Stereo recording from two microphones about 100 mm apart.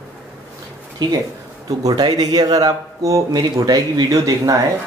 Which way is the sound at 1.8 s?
40° right (ahead or behind).